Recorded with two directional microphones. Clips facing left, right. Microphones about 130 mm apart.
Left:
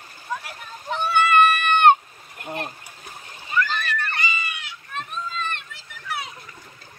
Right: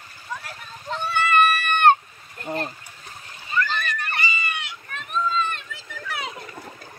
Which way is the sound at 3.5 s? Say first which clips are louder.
Left 1 dB; 5° left (ahead or behind).